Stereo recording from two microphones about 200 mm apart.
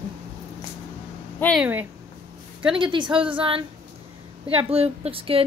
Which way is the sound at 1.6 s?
10° right (ahead or behind).